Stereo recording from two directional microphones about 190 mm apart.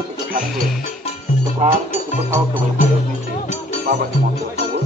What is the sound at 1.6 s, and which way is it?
Speech, 35° right (ahead or behind).